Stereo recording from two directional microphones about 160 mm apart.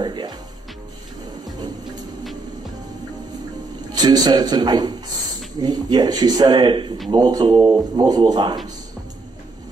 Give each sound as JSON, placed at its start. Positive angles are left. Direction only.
{"t": 0.0, "sound": "music", "side_deg": -30}
{"t": 3.9, "sound": "speech", "side_deg": -25}